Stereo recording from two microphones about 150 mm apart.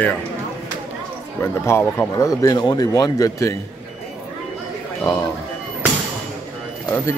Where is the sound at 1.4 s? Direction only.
15° left (ahead or behind).